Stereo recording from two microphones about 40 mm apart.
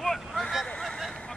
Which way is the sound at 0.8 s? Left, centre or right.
Centre.